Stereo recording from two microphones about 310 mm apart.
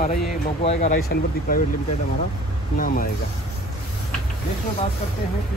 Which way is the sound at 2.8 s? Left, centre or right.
Left.